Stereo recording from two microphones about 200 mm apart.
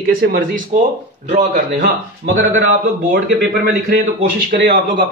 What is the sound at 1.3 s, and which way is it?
Speech, 35° right (ahead or behind).